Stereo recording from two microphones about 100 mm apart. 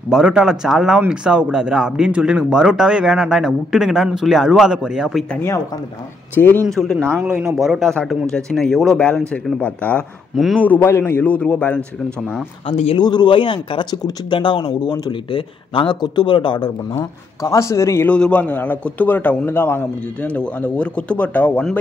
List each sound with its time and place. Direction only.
0.1 s speech: 5° right (ahead or behind)
6.3 s speech: 20° left (ahead or behind)
6.7 s a man's voice: 5° left (ahead or behind)
10.3 s speech: centre (ahead or behind)
10.6 s a man's voice: 20° left (ahead or behind)
12.6 s speech: 90° left
12.9 s speech: 45° left (ahead or behind)
17.4 s a man's voice: 30° left (ahead or behind)
18.0 s a man's voice: 10° left (ahead or behind)